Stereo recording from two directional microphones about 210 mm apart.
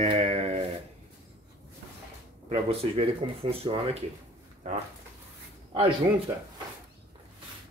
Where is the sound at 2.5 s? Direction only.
25° right (ahead or behind).